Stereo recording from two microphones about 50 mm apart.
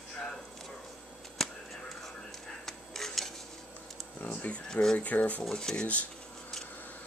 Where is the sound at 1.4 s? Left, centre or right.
Centre.